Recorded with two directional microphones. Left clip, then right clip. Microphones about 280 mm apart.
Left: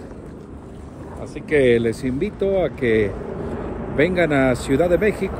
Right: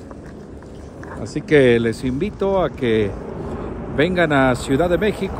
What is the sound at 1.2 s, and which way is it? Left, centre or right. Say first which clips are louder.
Speech: right 3 dB; right.